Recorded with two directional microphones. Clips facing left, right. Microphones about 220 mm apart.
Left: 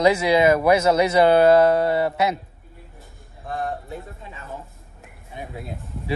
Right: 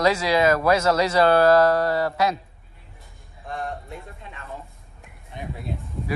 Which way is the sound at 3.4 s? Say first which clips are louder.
Left 3 dB; centre (ahead or behind).